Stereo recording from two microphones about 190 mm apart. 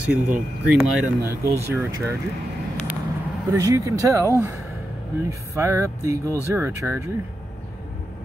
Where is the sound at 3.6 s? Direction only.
15° right (ahead or behind).